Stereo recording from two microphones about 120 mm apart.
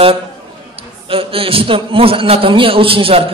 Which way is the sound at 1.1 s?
50° right (ahead or behind).